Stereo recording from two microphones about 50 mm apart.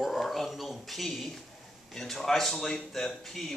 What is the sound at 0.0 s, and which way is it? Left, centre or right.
Speech, centre.